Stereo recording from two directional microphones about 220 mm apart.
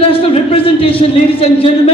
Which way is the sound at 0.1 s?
25° left (ahead or behind).